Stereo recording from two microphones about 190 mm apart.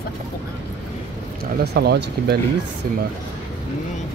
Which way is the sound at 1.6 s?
60° right (ahead or behind).